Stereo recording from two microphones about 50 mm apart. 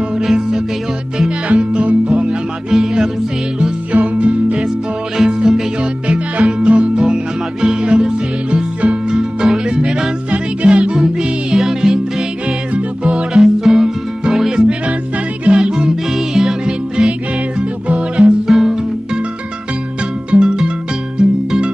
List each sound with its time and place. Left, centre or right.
1.5 s music: right
2.7 s music: centre
3.9 s music: right
5.1 s music: centre
6.0 s music: right
10.3 s music: right
11.5 s music: centre
18.5 s music: centre
20.2 s music: centre